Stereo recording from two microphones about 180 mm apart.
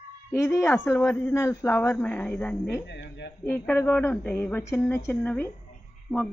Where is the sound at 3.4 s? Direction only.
10° left (ahead or behind).